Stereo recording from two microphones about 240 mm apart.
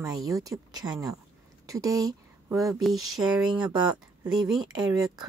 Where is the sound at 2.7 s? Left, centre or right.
Centre.